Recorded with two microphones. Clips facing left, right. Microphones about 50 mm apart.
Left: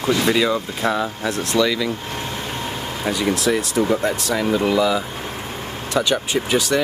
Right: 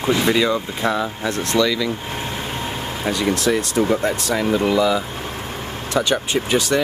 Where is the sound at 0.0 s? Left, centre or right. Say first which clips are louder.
Even; centre.